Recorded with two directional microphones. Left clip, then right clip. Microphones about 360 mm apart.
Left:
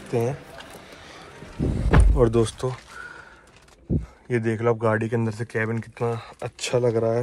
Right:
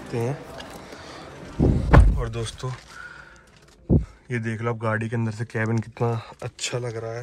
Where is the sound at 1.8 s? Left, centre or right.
Centre.